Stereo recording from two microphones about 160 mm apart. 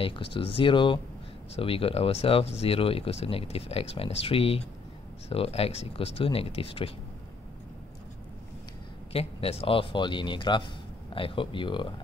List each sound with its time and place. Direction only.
0.0 s speech: 35° left (ahead or behind)
9.1 s speech: 40° left (ahead or behind)